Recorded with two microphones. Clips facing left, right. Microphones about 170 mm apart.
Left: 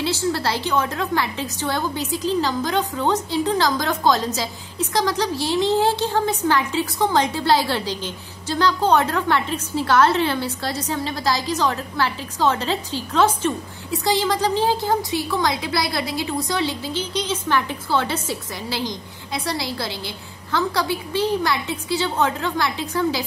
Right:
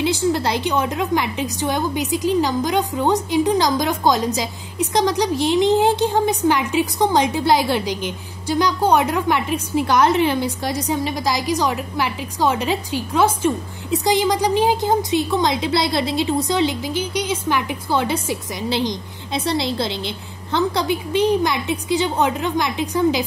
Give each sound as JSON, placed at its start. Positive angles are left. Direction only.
{"t": 0.0, "sound": "a woman's voice", "side_deg": -15}